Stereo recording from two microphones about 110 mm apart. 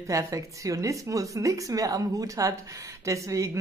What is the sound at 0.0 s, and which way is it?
A woman's voice, 30° right (ahead or behind).